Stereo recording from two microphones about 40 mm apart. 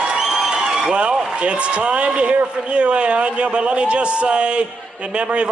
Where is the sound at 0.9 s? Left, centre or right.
Right.